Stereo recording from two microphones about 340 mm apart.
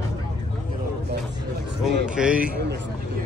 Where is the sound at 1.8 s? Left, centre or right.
Centre.